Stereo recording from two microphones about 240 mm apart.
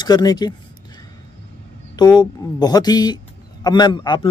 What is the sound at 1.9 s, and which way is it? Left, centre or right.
A man's voice, centre.